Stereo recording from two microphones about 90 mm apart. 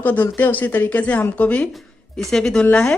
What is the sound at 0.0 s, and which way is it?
A woman's voice, 20° left (ahead or behind).